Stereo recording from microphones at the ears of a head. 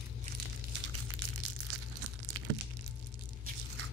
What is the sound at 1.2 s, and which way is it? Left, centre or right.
Crushing, right.